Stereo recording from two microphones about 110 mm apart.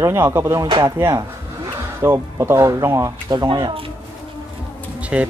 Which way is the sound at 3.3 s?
40° right (ahead or behind).